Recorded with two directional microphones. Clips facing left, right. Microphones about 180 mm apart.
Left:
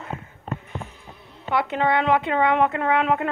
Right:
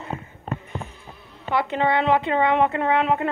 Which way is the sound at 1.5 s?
Centre (ahead or behind).